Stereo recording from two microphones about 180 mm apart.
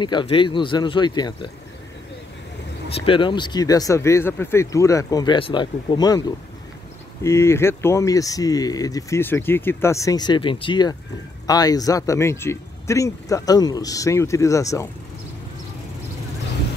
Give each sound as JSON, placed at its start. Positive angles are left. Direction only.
{"t": 0.0, "sound": "speech", "side_deg": 25}
{"t": 2.9, "sound": "speech", "side_deg": 30}